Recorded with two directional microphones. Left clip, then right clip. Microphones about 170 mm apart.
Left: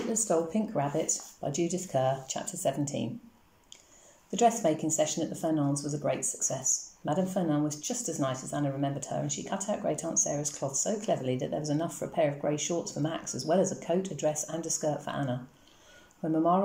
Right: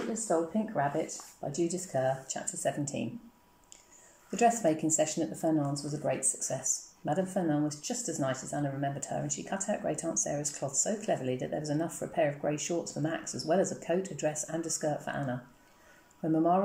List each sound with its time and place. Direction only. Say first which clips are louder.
0.5 s speech: even; 25° left (ahead or behind)
1.4 s speech: right 1 dB; centre (ahead or behind)
4.3 s speech: left 1 dB; 5° right (ahead or behind)